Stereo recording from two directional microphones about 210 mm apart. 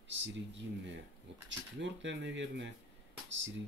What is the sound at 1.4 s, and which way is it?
Speech, 60° right (ahead or behind).